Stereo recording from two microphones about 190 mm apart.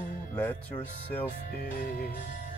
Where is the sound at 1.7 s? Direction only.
50° left (ahead or behind).